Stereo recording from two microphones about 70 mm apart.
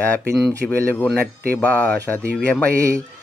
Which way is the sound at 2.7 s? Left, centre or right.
Right.